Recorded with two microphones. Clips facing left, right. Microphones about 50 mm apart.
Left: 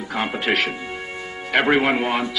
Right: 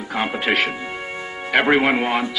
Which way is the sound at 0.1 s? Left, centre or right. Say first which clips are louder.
Right 1 dB; centre.